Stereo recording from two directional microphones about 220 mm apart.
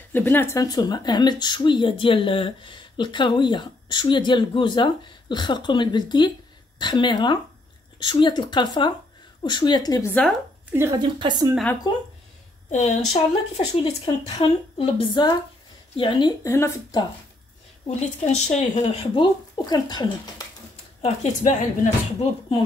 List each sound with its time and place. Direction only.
0.1 s speech: 10° left (ahead or behind)
10.7 s a woman's voice: 15° right (ahead or behind)
11.9 s speech: 20° left (ahead or behind)
12.6 s a woman's voice: 30° left (ahead or behind); by 17.0 s 15° left (ahead or behind)
17.8 s speech: 30° left (ahead or behind)
19.6 s speech: 20° left (ahead or behind)
21.0 s speech: 35° left (ahead or behind)